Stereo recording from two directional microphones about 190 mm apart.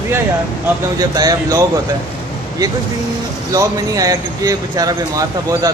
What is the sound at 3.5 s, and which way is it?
Speech, 20° right (ahead or behind).